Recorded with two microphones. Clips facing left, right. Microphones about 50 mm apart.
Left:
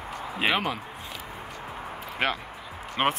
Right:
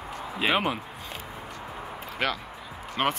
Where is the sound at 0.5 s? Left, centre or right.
Centre.